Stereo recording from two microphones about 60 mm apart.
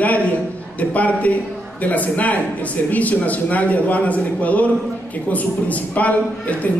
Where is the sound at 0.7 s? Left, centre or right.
Left.